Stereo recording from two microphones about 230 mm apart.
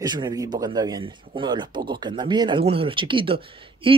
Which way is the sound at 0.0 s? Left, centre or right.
Centre.